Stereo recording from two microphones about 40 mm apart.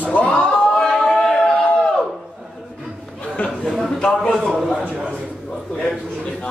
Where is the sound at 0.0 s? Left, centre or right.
Left.